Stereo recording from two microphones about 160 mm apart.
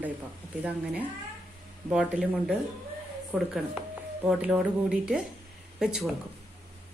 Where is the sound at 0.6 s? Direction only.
10° right (ahead or behind).